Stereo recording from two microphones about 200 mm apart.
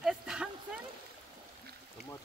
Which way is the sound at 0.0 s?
Centre (ahead or behind).